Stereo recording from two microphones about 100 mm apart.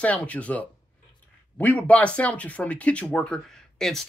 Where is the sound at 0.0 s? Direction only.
15° left (ahead or behind).